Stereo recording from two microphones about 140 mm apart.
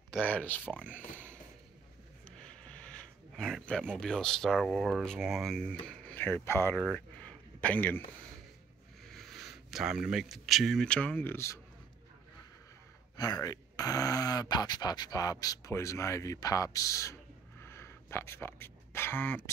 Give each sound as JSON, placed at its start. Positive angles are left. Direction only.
{"t": 0.2, "sound": "speech", "side_deg": 10}
{"t": 7.2, "sound": "a sound", "side_deg": 10}
{"t": 9.1, "sound": "speech", "side_deg": 0}
{"t": 13.1, "sound": "speech", "side_deg": 25}